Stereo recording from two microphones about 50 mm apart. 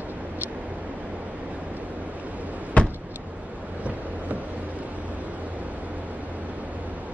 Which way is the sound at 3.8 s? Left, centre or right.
Right.